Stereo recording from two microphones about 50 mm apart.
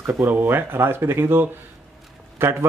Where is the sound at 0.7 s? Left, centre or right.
Right.